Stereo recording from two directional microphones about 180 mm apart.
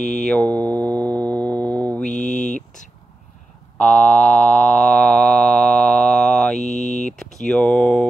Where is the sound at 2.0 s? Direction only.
45° left (ahead or behind).